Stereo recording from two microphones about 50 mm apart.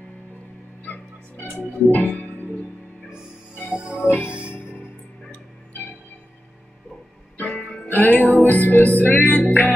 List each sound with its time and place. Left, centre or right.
0.8 s music: left
3.8 s music: right
4.5 s music: left
7.3 s music: left